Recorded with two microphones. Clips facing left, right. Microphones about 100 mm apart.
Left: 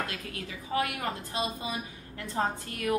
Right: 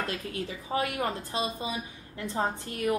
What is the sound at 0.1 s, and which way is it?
A woman's voice, 30° right (ahead or behind).